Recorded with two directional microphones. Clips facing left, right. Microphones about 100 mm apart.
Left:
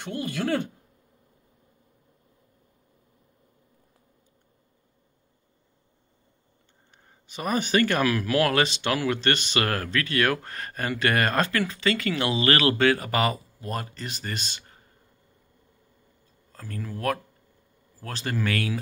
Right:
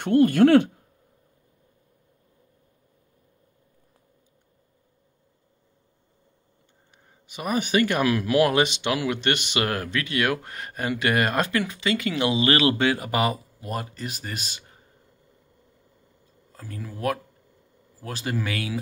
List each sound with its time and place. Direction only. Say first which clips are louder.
0.0 s speech: right 13 dB; 55° right (ahead or behind)
7.2 s speech: even; 10° right (ahead or behind)
16.5 s speech: left 2 dB; 10° right (ahead or behind)